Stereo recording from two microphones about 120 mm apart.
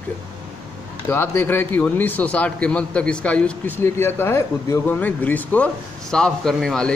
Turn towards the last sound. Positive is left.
turn(degrees=5)  # may be behind; listen again after turning